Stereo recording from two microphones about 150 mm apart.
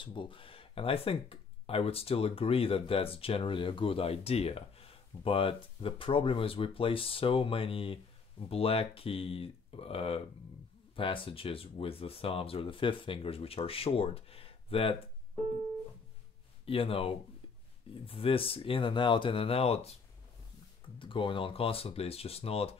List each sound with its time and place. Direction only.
0.0 s speech: 35° left (ahead or behind)
16.6 s speech: 40° left (ahead or behind)
21.0 s speech: 35° left (ahead or behind)